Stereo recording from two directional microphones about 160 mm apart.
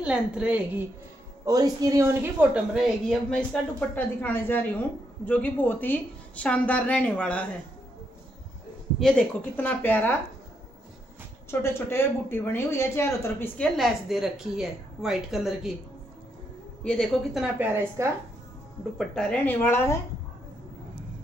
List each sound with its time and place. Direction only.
0.0 s a woman's voice: 5° right (ahead or behind)
1.4 s speech: 25° right (ahead or behind)
2.7 s a woman's voice: 5° left (ahead or behind)
9.0 s a woman's voice: 10° left (ahead or behind)
11.6 s a woman's voice: 15° left (ahead or behind)
13.7 s a woman's voice: centre (ahead or behind)
16.8 s a woman's voice: 5° left (ahead or behind); by 18.0 s 15° right (ahead or behind)
18.9 s a woman's voice: 5° left (ahead or behind)